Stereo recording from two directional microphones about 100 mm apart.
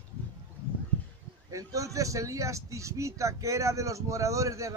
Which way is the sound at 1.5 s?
35° right (ahead or behind).